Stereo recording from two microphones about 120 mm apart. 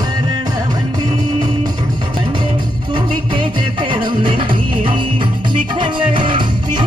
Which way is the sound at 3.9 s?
40° right (ahead or behind).